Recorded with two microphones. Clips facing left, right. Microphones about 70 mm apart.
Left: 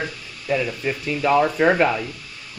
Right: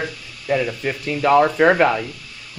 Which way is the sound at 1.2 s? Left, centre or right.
Right.